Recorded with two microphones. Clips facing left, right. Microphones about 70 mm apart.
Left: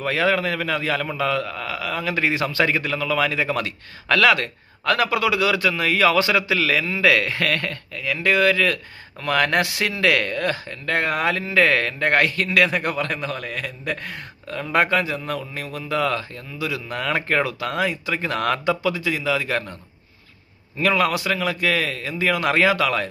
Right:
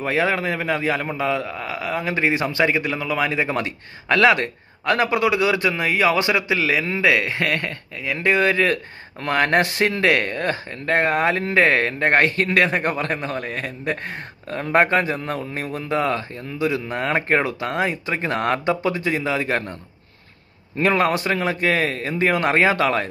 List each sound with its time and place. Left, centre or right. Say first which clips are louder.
0.0 s a man's voice: even; right
20.8 s a man's voice: right 1 dB; right